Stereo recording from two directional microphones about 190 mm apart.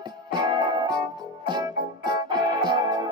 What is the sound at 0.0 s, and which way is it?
Music, 20° right (ahead or behind).